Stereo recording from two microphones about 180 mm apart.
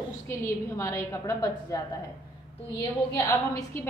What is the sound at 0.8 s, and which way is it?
A woman's voice, 15° left (ahead or behind).